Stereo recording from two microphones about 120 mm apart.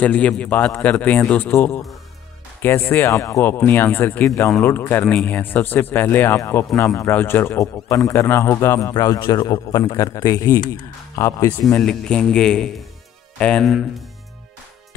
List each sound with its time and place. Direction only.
0.0 s a man's voice: 10° left (ahead or behind)
11.8 s a man's voice: 5° left (ahead or behind)